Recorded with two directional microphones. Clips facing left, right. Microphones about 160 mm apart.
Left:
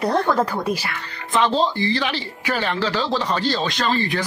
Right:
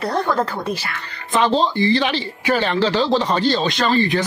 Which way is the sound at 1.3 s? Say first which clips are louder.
Right 2 dB; 20° right (ahead or behind).